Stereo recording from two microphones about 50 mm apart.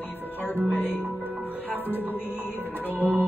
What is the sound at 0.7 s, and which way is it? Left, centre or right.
Music, left.